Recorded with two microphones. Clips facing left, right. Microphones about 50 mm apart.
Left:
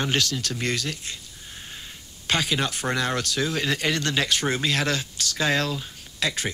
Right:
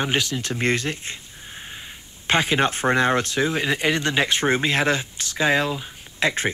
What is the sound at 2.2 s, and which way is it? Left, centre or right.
Speech, right.